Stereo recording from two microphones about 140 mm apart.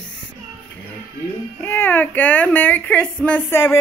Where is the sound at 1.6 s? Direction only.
15° left (ahead or behind).